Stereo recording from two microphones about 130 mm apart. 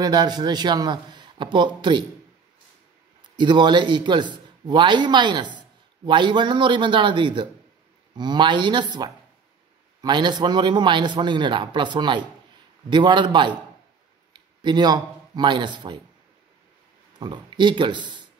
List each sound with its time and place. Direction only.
0.0 s a man's voice: 35° right (ahead or behind)
3.3 s a man's voice: 35° right (ahead or behind)
17.2 s a man's voice: 35° right (ahead or behind)